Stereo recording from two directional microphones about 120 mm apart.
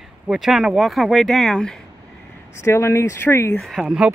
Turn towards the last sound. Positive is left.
turn(degrees=-5)  # may be behind; listen again after turning